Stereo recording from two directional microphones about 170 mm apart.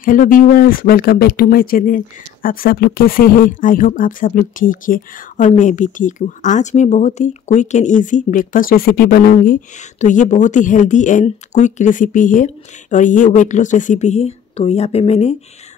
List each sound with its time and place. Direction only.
0.0 s speech: 50° left (ahead or behind)